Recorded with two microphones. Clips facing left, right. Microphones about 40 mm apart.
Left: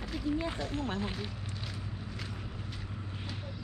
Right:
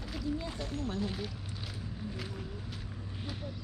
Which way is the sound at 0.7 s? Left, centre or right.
Left.